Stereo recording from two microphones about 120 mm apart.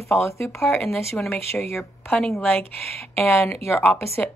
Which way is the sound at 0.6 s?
Centre (ahead or behind).